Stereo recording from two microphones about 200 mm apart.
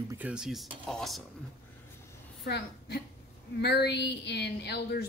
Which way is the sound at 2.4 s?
55° left (ahead or behind).